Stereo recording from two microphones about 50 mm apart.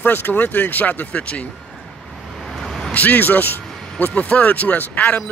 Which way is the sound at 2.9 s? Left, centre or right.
Left.